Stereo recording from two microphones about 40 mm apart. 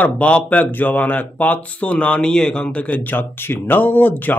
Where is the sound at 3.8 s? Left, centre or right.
Left.